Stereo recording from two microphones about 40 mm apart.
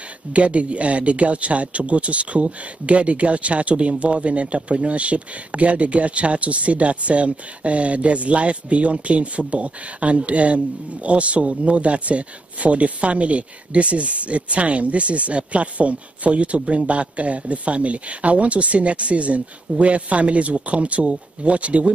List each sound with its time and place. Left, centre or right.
0.3 s speech: right